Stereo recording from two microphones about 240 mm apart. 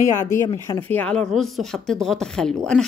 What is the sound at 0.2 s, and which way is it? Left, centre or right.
Speech, centre.